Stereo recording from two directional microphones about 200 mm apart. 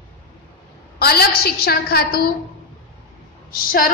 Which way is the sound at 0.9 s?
50° left (ahead or behind).